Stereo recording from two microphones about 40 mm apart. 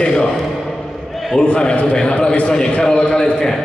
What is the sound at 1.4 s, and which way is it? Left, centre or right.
Speech, left.